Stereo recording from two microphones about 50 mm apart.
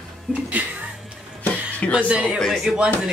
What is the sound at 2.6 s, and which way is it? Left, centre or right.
Speech, centre.